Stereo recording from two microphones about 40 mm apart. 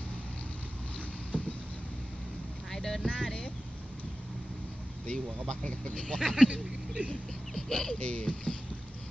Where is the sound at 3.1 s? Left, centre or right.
Left.